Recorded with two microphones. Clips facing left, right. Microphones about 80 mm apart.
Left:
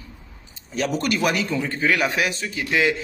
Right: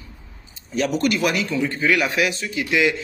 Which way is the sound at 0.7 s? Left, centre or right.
Left.